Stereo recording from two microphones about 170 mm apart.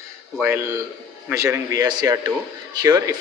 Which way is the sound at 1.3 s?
20° right (ahead or behind).